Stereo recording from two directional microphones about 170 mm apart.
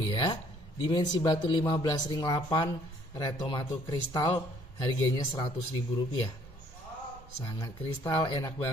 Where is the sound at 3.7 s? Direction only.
20° left (ahead or behind).